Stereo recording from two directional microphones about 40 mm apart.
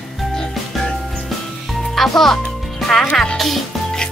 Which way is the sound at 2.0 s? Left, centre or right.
Centre.